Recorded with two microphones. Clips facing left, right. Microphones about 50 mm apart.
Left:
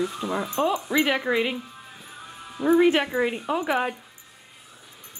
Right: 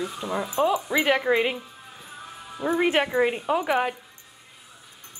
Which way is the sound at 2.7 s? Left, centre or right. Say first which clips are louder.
Even; centre.